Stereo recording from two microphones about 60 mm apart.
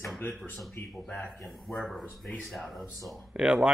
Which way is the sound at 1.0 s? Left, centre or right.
Centre.